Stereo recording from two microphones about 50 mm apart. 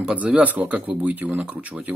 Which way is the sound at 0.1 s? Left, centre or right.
Right.